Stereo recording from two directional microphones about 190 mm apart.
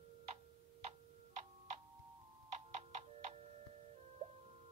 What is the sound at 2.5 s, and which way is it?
Music, 35° right (ahead or behind).